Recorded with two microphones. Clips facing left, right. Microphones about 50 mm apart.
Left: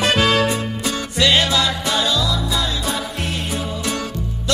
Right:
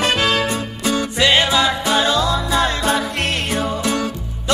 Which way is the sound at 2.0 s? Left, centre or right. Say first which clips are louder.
Right 3 dB; right.